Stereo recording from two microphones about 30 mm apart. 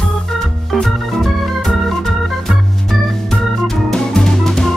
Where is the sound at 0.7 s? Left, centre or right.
Centre.